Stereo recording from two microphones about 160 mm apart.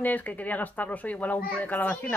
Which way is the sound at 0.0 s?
10° left (ahead or behind).